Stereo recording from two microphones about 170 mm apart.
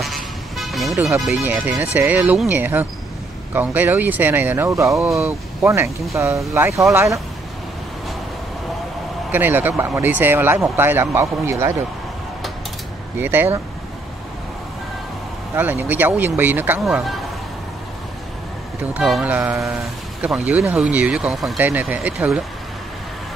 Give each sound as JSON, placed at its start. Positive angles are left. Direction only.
{"t": 0.0, "sound": "vehicle", "side_deg": 0}
{"t": 1.2, "sound": "speech", "side_deg": -5}
{"t": 6.1, "sound": "speech", "side_deg": -15}
{"t": 9.3, "sound": "speech", "side_deg": -10}
{"t": 13.2, "sound": "speech", "side_deg": -10}
{"t": 15.5, "sound": "speech", "side_deg": -10}
{"t": 18.8, "sound": "speech", "side_deg": -5}